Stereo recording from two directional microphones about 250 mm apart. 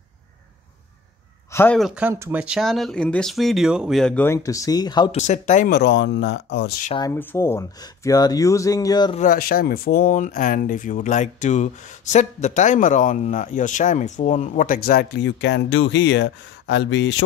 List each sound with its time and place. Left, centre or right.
1.5 s speech: centre
5.2 s speech: left
7.0 s speech: centre
9.2 s speech: left